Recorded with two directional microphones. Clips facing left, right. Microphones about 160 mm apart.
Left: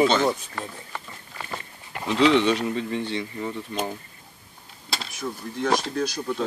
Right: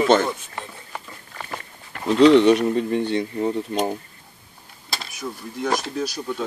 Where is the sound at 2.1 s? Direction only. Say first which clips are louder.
Right 6 dB; 40° right (ahead or behind).